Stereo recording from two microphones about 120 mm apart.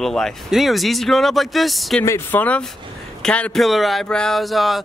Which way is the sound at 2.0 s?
20° left (ahead or behind).